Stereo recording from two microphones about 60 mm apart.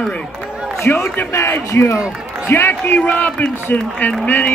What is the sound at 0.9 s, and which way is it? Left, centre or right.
Speech, left.